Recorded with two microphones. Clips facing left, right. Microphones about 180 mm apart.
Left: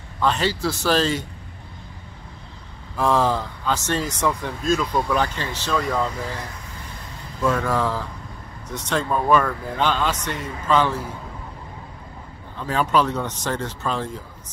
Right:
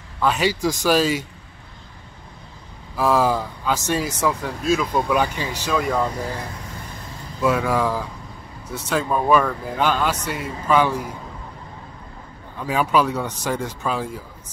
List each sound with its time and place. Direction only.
0.2 s speech: 10° right (ahead or behind)
3.0 s speech: 5° right (ahead or behind)
7.4 s speech: 10° right (ahead or behind)
12.5 s speech: 10° right (ahead or behind)